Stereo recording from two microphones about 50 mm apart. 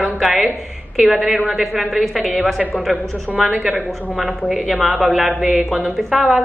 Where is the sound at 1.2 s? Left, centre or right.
Centre.